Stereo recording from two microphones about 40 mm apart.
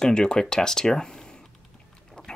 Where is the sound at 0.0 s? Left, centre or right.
Centre.